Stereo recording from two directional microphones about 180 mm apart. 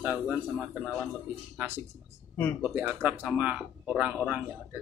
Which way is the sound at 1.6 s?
10° right (ahead or behind).